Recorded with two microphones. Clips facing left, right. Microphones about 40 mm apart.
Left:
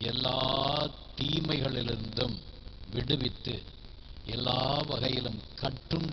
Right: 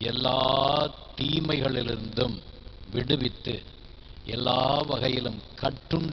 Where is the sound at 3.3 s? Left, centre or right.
Right.